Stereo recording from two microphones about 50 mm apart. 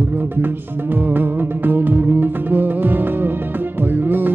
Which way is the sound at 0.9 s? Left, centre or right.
Right.